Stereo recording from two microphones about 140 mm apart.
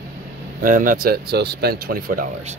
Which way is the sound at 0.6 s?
75° right (ahead or behind).